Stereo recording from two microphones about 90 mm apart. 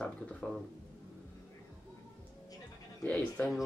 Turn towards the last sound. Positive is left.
turn(degrees=15)  # may be behind; listen again after turning